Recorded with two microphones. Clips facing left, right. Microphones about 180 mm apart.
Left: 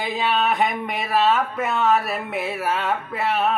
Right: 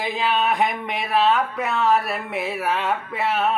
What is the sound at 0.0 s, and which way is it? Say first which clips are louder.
Speech: even; centre (ahead or behind).